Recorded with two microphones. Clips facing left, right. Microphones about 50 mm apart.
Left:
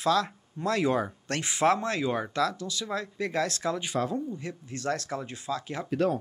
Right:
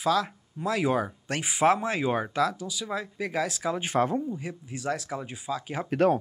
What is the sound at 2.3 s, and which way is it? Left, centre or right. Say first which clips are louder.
Speech: right 1 dB; centre.